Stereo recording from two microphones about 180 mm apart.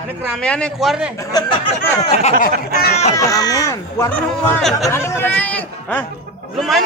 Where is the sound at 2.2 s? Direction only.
40° left (ahead or behind).